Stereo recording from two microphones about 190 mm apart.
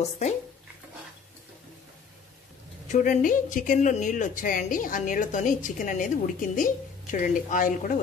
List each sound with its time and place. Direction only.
2.9 s a woman's voice: 45° left (ahead or behind)